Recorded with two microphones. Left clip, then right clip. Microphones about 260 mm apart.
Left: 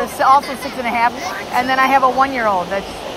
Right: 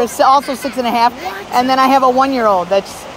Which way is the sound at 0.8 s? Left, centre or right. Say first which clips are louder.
Right 3 dB; right.